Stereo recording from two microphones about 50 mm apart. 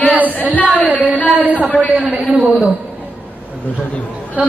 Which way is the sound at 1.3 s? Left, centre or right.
Right.